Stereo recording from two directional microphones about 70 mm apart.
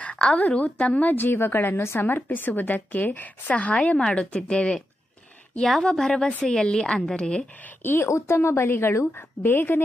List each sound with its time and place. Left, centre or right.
0.0 s a woman's voice: centre
7.8 s a woman's voice: left